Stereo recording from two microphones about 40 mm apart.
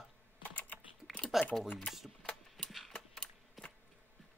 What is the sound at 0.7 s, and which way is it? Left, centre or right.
Typing, left.